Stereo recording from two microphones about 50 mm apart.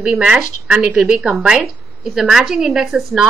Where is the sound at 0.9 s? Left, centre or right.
Centre.